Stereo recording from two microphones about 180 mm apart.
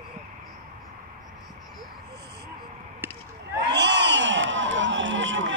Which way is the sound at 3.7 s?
70° right (ahead or behind).